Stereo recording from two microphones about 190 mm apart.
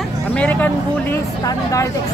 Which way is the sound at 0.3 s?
10° left (ahead or behind).